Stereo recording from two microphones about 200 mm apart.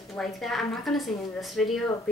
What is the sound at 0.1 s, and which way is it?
A woman's voice, centre (ahead or behind).